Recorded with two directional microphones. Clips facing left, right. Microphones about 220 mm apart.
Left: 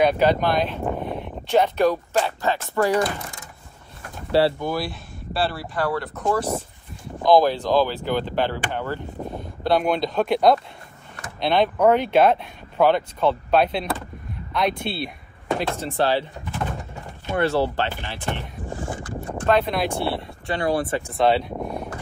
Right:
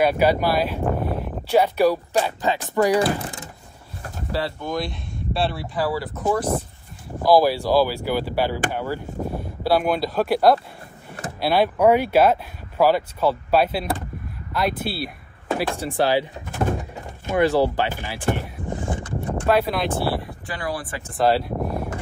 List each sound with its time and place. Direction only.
0.0 s speech: 5° right (ahead or behind)
4.3 s speech: 30° left (ahead or behind)
4.6 s speech: 5° left (ahead or behind); by 16.3 s 10° right (ahead or behind)
17.3 s speech: 15° right (ahead or behind)
18.7 s a sound: 20° right (ahead or behind)
19.4 s speech: 5° right (ahead or behind)
20.5 s speech: 25° left (ahead or behind)
21.1 s a sound: centre (ahead or behind)